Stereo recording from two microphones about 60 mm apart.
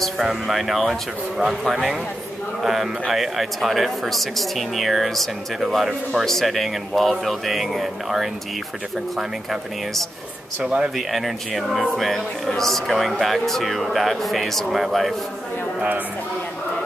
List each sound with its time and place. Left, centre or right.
0.0 s speech: centre
10.6 s speech: centre
11.0 s speech: centre